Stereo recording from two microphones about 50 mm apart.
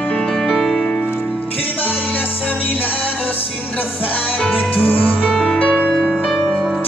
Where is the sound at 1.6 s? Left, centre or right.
Left.